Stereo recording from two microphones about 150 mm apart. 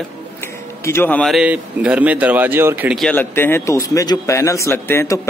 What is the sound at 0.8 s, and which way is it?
Speech, 15° left (ahead or behind).